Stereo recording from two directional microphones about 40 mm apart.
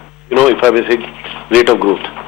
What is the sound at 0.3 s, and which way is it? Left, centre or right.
Radio, centre.